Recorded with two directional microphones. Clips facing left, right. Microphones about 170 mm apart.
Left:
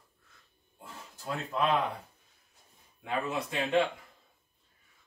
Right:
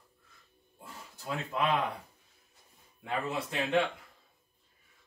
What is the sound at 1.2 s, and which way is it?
Speech, 10° right (ahead or behind).